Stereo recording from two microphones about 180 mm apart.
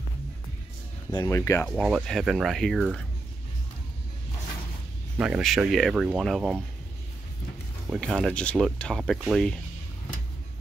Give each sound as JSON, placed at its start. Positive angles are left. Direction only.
{"t": 1.2, "sound": "speech", "side_deg": 15}
{"t": 1.7, "sound": "speech", "side_deg": -5}
{"t": 5.1, "sound": "speech", "side_deg": -5}
{"t": 7.9, "sound": "speech", "side_deg": 0}